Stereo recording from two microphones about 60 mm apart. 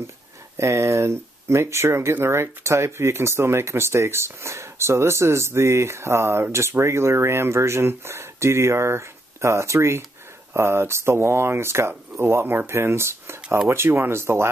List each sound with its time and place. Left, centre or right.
0.6 s speech: right